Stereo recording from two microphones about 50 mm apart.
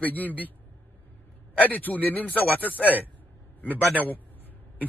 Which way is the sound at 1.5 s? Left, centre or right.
Left.